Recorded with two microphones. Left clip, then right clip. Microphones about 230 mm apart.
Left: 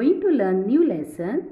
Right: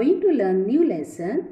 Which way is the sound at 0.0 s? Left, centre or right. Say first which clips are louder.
Right 1 dB; centre.